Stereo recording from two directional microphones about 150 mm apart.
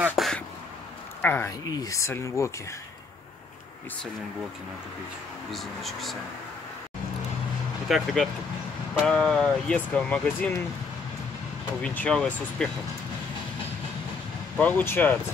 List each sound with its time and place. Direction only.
0.2 s a sound: centre (ahead or behind)
1.2 s speech: 15° left (ahead or behind)
5.5 s speech: centre (ahead or behind)
7.9 s speech: centre (ahead or behind)
11.8 s speech: 10° left (ahead or behind)
14.6 s speech: 10° left (ahead or behind)